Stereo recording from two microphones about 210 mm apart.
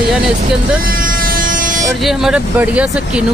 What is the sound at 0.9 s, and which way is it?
Vehicle, 40° right (ahead or behind).